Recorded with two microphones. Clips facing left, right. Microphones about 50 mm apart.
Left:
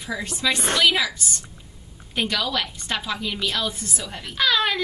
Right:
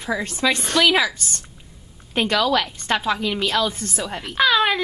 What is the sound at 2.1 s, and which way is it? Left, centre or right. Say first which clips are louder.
A woman's voice: right 5 dB; right.